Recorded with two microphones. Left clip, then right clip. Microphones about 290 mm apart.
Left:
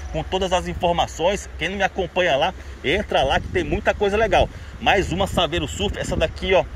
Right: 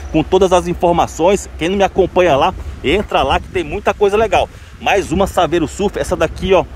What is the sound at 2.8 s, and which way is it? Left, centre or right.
Speech, centre.